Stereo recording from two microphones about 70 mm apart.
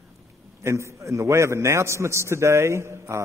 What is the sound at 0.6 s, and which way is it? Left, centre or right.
A man's voice, right.